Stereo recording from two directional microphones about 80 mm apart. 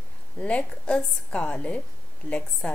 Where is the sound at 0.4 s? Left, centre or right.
Centre.